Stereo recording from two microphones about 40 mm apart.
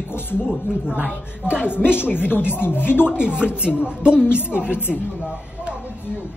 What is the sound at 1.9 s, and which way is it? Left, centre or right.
Speech, left.